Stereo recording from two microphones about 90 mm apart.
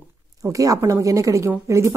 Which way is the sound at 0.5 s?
40° right (ahead or behind).